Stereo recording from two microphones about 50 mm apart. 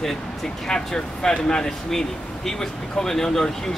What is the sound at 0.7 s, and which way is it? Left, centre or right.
Speech, centre.